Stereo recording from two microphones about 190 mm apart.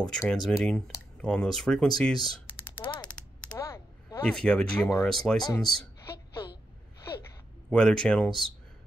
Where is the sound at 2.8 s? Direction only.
25° left (ahead or behind).